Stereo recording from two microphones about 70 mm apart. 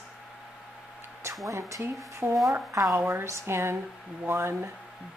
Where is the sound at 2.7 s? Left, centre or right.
Right.